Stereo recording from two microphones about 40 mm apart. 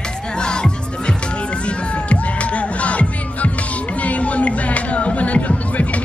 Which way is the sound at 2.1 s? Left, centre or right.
Left.